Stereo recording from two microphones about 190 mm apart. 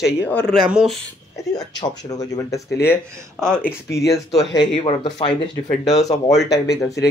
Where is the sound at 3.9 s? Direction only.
15° left (ahead or behind).